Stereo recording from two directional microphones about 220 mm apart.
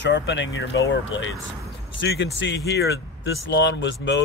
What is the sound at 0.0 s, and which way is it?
Speech, 55° left (ahead or behind).